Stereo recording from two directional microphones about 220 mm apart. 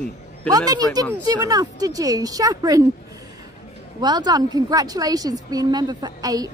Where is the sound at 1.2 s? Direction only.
15° right (ahead or behind).